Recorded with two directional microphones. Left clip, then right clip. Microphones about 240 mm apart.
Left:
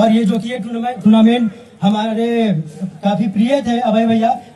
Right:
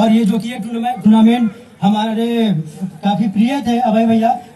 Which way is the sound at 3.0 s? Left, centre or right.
Left.